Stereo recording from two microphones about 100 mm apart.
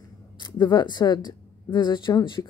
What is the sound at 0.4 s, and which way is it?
Speech, 45° left (ahead or behind).